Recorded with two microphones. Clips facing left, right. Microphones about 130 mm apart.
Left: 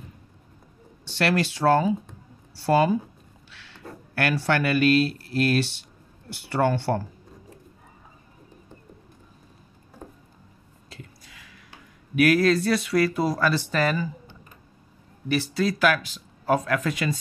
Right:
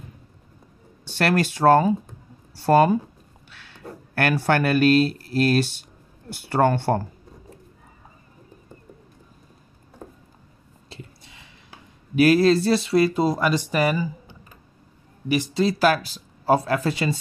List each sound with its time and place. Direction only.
1.0 s speech: 50° right (ahead or behind)
10.9 s a sound: 25° right (ahead or behind)
12.2 s speech: 30° right (ahead or behind)